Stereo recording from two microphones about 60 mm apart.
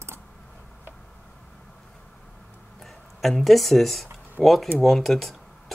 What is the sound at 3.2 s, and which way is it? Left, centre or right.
Speech, centre.